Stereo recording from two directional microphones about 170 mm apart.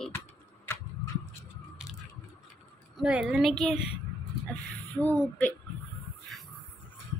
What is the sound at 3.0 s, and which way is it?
Speech, 5° right (ahead or behind).